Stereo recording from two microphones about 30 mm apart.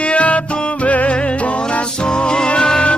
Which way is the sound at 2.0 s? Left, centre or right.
Left.